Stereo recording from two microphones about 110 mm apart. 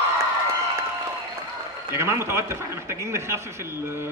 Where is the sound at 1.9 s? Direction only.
25° right (ahead or behind).